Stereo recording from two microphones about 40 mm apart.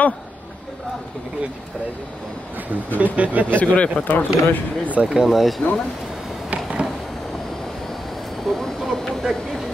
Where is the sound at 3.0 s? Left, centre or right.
Right.